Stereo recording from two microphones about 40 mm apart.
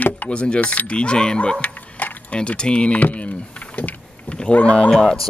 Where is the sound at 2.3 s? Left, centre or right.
Left.